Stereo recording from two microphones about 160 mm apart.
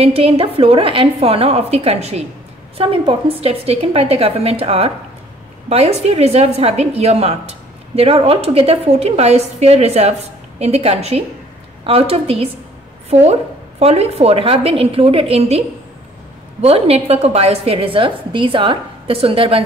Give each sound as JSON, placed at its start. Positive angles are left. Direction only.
{"t": 0.0, "sound": "a woman's voice", "side_deg": -40}
{"t": 16.6, "sound": "a woman's voice", "side_deg": -40}